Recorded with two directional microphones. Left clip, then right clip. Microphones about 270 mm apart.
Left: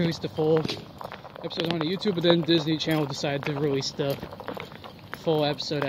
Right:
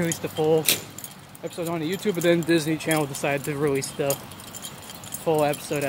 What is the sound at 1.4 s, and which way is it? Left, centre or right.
Speech, centre.